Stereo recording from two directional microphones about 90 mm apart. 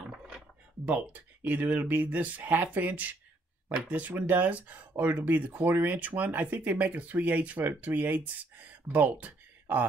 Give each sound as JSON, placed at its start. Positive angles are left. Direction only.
{"t": 0.8, "sound": "speech", "side_deg": -20}